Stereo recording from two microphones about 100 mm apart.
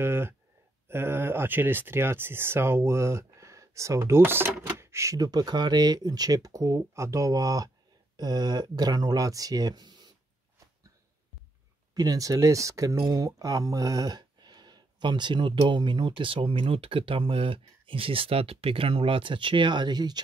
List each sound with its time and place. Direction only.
0.0 s speech: 25° right (ahead or behind); by 9.9 s 40° right (ahead or behind)
11.9 s speech: 40° right (ahead or behind)